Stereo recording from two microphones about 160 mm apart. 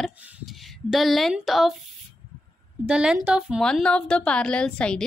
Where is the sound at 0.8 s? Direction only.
Centre (ahead or behind).